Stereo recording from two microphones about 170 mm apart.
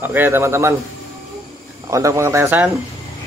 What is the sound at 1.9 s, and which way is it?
Speech, 15° right (ahead or behind).